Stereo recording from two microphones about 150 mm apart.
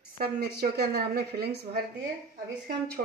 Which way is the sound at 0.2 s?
90° right.